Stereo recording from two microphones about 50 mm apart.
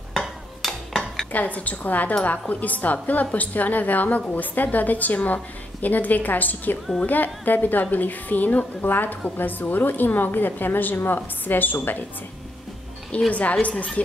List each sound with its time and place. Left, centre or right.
0.1 s stir: centre
1.3 s a woman's voice: left
13.3 s a woman's voice: left